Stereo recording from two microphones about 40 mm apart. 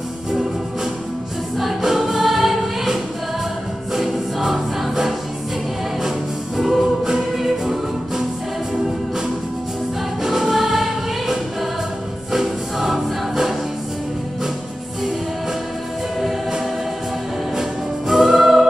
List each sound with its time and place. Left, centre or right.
1.8 s music: centre
10.2 s music: centre
16.2 s music: centre